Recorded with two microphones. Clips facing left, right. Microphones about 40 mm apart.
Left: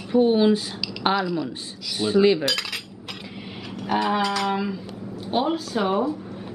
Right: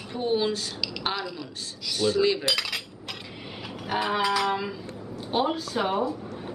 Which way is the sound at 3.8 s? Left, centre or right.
Centre.